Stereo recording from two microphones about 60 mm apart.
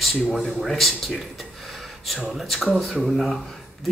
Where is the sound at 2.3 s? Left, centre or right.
Centre.